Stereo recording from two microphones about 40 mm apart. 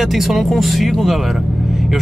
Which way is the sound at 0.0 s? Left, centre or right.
Centre.